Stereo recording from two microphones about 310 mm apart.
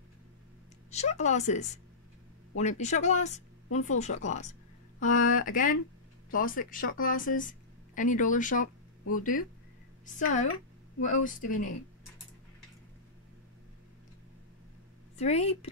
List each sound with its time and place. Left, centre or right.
0.9 s a woman's voice: left
15.1 s a woman's voice: left